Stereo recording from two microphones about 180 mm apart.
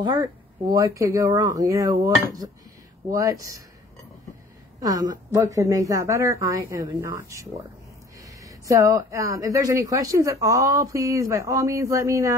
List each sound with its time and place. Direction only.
0.0 s speech: 20° right (ahead or behind)
4.7 s a woman's voice: 20° right (ahead or behind)
8.5 s speech: 20° right (ahead or behind)